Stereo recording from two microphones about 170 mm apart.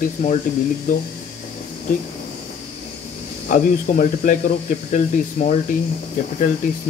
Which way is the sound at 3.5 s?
50° left (ahead or behind).